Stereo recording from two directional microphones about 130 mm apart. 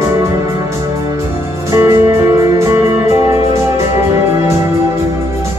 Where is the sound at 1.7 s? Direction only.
20° right (ahead or behind).